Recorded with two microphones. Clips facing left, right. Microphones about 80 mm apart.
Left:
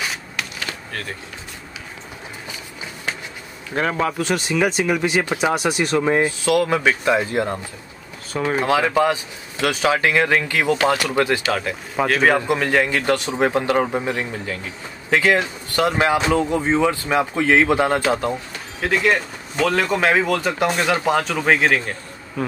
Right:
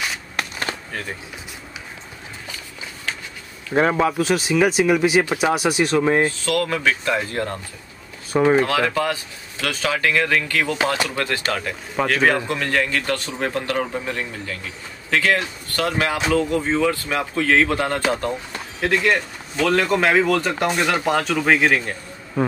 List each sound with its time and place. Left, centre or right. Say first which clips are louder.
0.4 s skateboard: right 4 dB; right
3.7 s speech: right 3 dB; centre
6.4 s speech: left 3 dB; centre
8.3 s speech: right 6 dB; centre
8.5 s speech: left 1 dB; centre
11.5 s speech: left 2 dB; centre
18.8 s speech: even; centre